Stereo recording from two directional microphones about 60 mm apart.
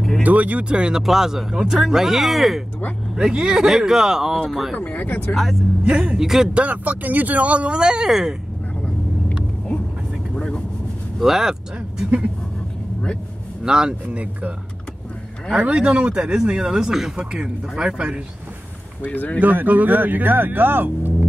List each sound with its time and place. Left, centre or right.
0.2 s speech: right; by 4.7 s centre
4.7 s speech: left
5.3 s speech: centre
5.9 s speech: centre
6.1 s speech: centre
6.5 s speech: right; by 8.4 s centre
8.8 s vehicle: centre
11.1 s speech: centre
13.7 s speech: centre
15.5 s speech: centre
19.0 s speech: left
19.4 s speech: right